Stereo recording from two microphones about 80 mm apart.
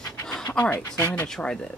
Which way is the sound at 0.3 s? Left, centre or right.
Centre.